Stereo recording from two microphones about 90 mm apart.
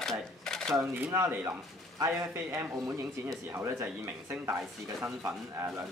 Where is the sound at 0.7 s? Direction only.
30° right (ahead or behind).